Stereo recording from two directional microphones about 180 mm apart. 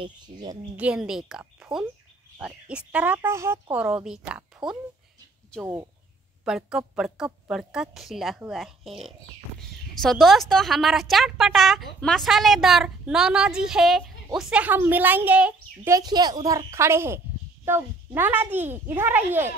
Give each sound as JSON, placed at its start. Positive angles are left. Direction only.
{"t": 0.0, "sound": "a woman's voice", "side_deg": -25}
{"t": 0.7, "sound": "a woman's voice", "side_deg": -5}
{"t": 3.8, "sound": "a child's voice", "side_deg": -5}
{"t": 6.4, "sound": "a woman's voice", "side_deg": -5}
{"t": 15.9, "sound": "a woman's voice", "side_deg": -20}